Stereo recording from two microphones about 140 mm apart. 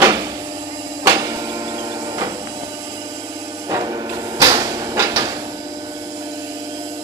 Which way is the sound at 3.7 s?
25° right (ahead or behind).